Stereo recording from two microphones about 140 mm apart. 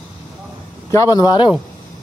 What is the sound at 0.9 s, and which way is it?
Speech, 25° left (ahead or behind).